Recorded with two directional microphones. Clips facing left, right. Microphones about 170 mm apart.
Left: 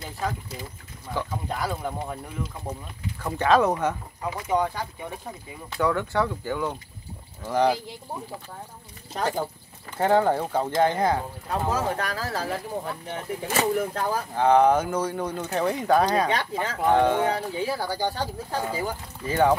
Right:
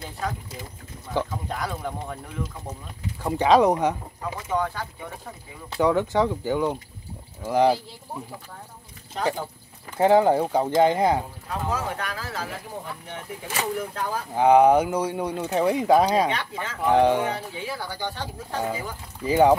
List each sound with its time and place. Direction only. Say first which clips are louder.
1.5 s speech: left 1 dB; 5° left (ahead or behind)
3.2 s speech: right 3 dB; 15° right (ahead or behind)
4.2 s speech: left 3 dB; 15° left (ahead or behind)
5.7 s speech: right 4 dB; 20° right (ahead or behind)
9.9 s speech: right 3 dB; 10° right (ahead or behind)
11.4 s speech: left 3 dB; 40° left (ahead or behind)
14.3 s speech: right 3 dB; 10° right (ahead or behind)
16.3 s speech: left 3 dB; 35° left (ahead or behind)
16.9 s speech: right 2 dB; 15° right (ahead or behind)
17.3 s speech: left 4 dB; 35° left (ahead or behind)
19.2 s speech: right 4 dB; 15° right (ahead or behind)